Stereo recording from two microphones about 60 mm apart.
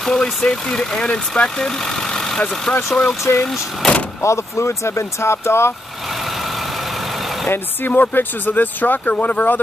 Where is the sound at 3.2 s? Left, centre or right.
Left.